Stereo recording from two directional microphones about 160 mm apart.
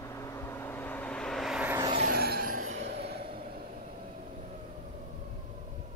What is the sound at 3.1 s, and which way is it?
Vehicle, 75° right (ahead or behind).